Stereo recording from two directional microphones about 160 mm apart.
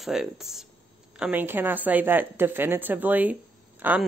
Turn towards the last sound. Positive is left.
turn(degrees=-10)  # may be behind; listen again after turning